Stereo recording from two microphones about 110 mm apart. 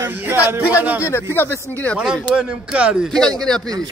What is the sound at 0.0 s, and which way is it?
Speech, 20° right (ahead or behind).